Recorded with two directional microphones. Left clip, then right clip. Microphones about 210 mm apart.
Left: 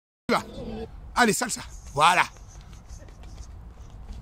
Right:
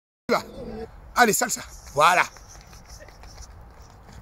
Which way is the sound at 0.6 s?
20° left (ahead or behind).